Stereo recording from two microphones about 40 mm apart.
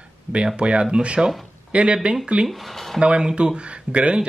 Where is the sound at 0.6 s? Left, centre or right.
Right.